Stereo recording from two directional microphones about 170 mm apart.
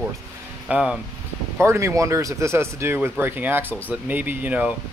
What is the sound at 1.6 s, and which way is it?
Speech, 15° right (ahead or behind).